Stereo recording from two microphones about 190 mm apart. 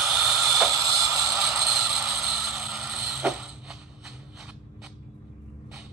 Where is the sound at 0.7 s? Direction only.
15° right (ahead or behind).